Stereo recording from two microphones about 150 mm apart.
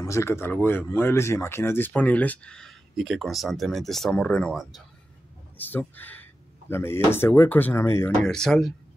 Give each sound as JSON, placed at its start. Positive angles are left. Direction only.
{"t": 0.0, "sound": "speech", "side_deg": 20}
{"t": 8.2, "sound": "speech", "side_deg": 5}